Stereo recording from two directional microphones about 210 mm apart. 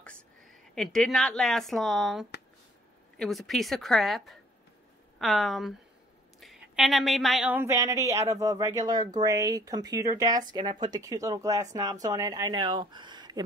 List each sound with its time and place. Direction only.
0.7 s speech: centre (ahead or behind); by 13.4 s 20° right (ahead or behind)